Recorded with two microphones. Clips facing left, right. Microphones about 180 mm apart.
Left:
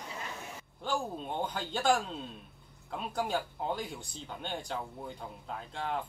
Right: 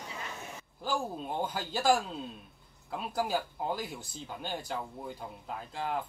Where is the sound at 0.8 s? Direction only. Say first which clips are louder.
Right 1 dB; 5° right (ahead or behind).